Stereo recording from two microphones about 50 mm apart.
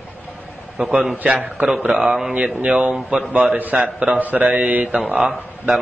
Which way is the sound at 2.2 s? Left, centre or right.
Right.